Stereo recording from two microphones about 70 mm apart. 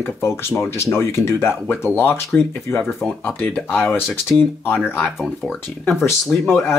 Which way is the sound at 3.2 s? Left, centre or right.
Centre.